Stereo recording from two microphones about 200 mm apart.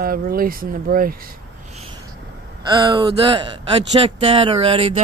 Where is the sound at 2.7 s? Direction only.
20° right (ahead or behind).